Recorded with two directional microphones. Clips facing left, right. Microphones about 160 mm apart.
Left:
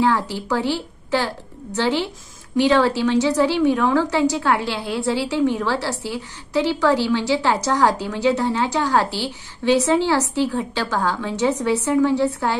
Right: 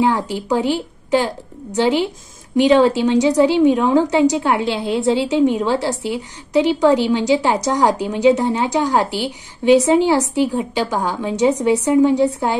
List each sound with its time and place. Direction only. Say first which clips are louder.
0.0 s a woman's voice: right 2 dB; 15° right (ahead or behind)